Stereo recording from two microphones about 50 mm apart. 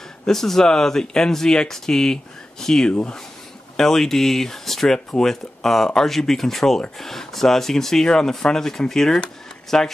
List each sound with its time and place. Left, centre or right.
0.3 s speech: centre
2.9 s speech: left
3.7 s speech: centre